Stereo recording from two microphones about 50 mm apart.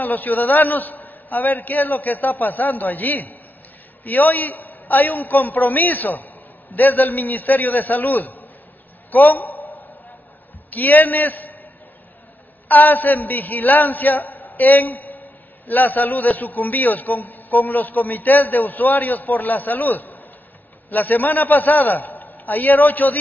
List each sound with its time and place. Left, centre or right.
0.0 s a man's voice: left
9.1 s a sound: left
10.7 s a man's voice: left
12.6 s a man's voice: left